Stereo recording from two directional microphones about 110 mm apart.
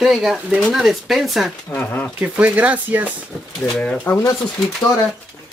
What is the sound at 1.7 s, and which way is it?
Speech, 15° left (ahead or behind).